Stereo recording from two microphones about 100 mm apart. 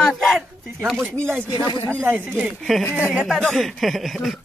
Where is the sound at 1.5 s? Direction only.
50° left (ahead or behind).